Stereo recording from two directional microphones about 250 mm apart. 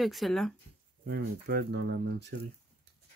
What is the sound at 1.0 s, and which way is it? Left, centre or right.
Speech, right.